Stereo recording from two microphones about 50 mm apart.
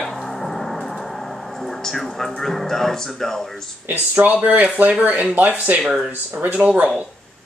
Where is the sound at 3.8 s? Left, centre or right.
Right.